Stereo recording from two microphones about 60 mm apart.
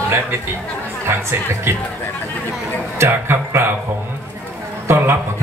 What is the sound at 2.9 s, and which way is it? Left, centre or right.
Speech, right.